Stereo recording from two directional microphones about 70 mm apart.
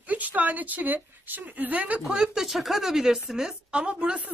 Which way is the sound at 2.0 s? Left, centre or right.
Centre.